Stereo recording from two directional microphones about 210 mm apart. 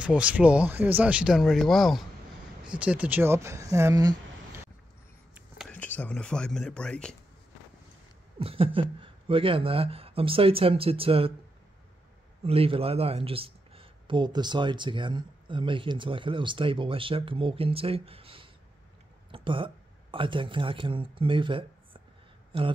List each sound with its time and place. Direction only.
0.0 s speech: 5° right (ahead or behind)
5.7 s speech: 5° left (ahead or behind)
8.4 s speech: 25° right (ahead or behind)
12.4 s speech: 25° right (ahead or behind)